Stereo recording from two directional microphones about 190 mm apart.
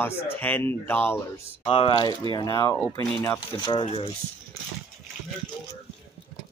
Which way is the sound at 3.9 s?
30° left (ahead or behind).